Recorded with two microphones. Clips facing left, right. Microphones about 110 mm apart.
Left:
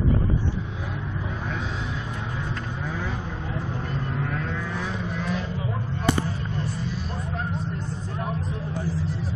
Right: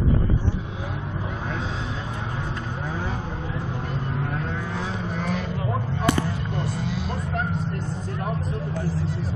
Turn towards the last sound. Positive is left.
turn(degrees=-80)